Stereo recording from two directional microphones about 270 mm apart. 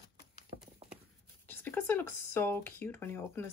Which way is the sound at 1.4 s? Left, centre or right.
Centre.